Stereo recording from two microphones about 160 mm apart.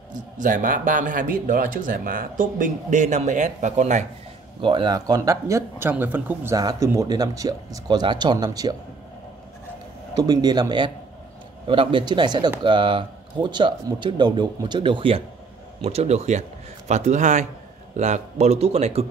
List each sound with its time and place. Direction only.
0.1 s a man's voice: 55° right (ahead or behind)
4.6 s speech: 30° right (ahead or behind); by 6.5 s 10° right (ahead or behind)
6.5 s speech: 20° right (ahead or behind)
10.1 s speech: 25° right (ahead or behind); by 19.0 s 40° right (ahead or behind)